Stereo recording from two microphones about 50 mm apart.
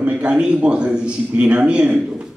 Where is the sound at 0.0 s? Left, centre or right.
Right.